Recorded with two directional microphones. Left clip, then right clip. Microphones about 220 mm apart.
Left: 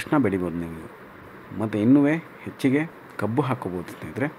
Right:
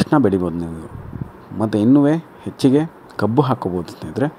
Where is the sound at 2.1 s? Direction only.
30° right (ahead or behind).